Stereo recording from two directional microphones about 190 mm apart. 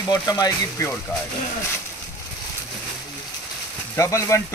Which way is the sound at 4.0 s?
15° left (ahead or behind).